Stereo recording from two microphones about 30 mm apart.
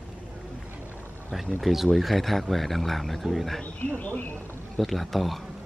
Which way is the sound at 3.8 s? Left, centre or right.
Left.